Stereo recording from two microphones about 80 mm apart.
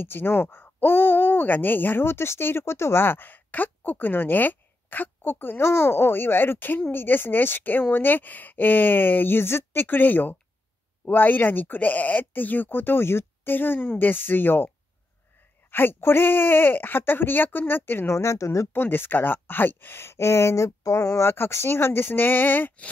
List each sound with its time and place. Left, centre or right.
0.0 s speech: left
15.7 s speech: left
18.7 s speech: left